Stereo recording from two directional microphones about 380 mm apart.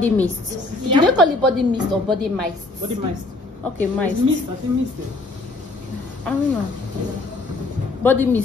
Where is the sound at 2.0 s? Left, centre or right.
Centre.